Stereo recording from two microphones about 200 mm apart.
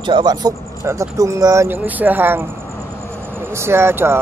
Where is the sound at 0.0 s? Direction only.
20° right (ahead or behind).